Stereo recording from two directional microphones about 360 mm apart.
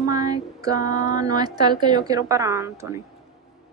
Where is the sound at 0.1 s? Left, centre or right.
Centre.